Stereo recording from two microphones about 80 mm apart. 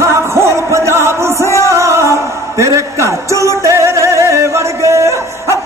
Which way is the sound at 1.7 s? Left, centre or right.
Right.